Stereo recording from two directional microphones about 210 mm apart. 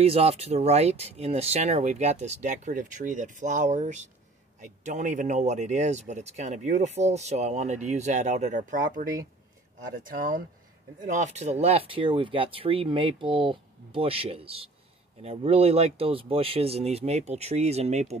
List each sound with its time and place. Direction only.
0.0 s speech: 30° right (ahead or behind)